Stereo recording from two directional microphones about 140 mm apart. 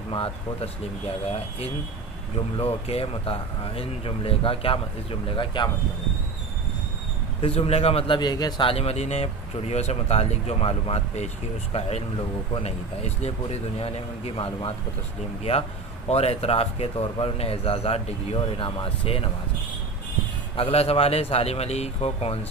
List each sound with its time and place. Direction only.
0.1 s speech: 45° left (ahead or behind)
7.4 s speech: 45° left (ahead or behind)
8.2 s speech: 30° left (ahead or behind)
16.1 s speech: 45° left (ahead or behind)
20.5 s speech: 45° left (ahead or behind)